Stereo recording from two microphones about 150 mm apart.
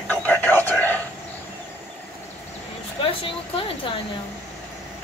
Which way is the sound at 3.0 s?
40° left (ahead or behind).